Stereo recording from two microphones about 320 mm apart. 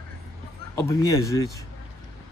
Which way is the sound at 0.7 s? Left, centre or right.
Centre.